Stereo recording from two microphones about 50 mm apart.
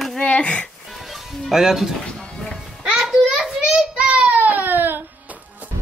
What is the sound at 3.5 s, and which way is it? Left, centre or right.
Child singing, centre.